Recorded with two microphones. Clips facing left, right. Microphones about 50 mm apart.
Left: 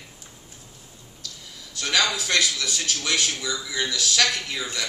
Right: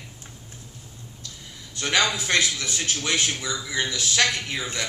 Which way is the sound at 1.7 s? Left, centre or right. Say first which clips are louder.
Right 1 dB; right.